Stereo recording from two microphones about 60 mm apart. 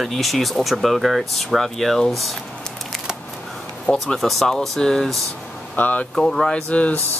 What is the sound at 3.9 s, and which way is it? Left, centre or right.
Speech, centre.